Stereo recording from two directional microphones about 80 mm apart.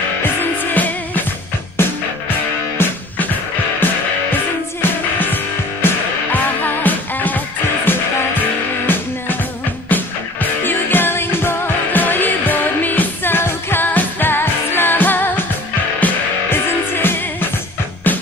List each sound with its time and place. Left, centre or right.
0.2 s music: left
4.8 s music: left
9.8 s music: left